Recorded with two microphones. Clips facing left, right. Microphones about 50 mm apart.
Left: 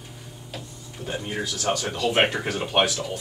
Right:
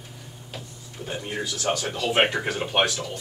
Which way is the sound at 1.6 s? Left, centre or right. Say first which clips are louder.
Left 1 dB; centre.